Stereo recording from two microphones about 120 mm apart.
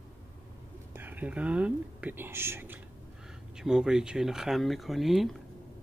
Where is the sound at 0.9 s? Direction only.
15° right (ahead or behind).